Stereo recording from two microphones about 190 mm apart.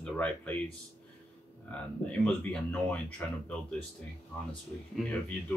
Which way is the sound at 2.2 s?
5° left (ahead or behind).